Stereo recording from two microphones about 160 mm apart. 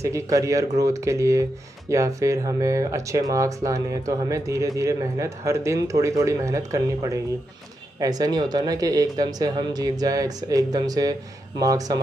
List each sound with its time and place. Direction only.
0.0 s speech: 20° right (ahead or behind)